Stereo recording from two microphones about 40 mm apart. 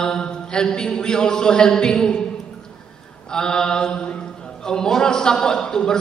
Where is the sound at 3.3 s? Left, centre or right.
Centre.